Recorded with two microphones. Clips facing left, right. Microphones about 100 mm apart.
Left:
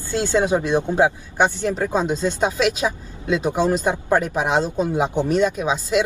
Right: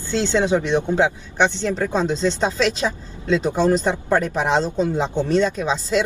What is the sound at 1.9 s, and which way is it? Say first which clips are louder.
Speech: right 1 dB; 10° left (ahead or behind).